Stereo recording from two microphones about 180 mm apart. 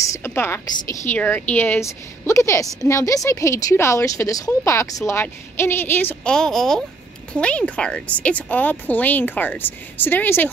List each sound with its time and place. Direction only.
0.1 s a woman's voice: 15° left (ahead or behind)